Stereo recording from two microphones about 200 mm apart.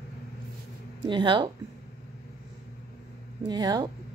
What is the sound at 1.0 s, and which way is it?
Speech, 25° right (ahead or behind).